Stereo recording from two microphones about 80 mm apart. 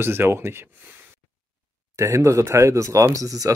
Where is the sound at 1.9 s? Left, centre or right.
Right.